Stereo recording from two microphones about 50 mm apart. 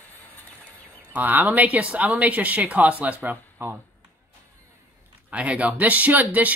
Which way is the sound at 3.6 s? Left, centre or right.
Right.